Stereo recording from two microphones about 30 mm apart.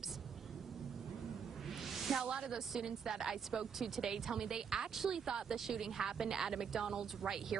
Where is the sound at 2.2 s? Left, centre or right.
Right.